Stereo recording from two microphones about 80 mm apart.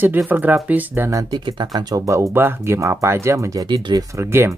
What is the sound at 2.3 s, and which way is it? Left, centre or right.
Speech, right.